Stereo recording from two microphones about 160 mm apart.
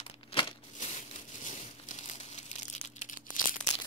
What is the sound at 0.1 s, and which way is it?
Crumpling, 35° left (ahead or behind).